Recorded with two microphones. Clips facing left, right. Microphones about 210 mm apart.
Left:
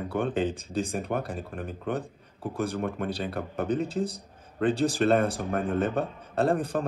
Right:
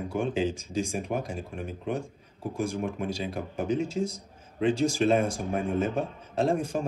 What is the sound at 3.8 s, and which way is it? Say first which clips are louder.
Speech: even; 35° left (ahead or behind).